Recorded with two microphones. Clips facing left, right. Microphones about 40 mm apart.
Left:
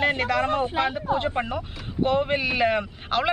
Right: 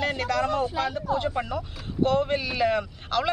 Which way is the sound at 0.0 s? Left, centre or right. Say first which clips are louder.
Left 3 dB; left.